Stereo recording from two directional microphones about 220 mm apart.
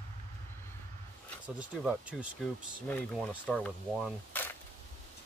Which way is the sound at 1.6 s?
5° right (ahead or behind).